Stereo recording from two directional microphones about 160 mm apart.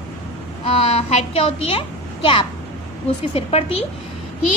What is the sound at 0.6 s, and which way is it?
A child's voice, 35° left (ahead or behind).